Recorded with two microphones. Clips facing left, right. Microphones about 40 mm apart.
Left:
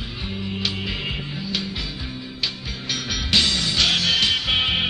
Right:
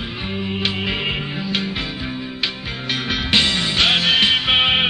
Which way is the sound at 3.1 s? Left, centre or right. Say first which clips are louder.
Right 3 dB; right.